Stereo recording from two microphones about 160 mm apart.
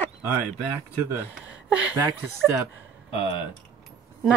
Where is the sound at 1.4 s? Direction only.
10° right (ahead or behind).